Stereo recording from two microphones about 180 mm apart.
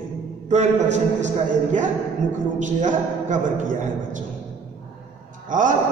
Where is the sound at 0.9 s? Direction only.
40° right (ahead or behind).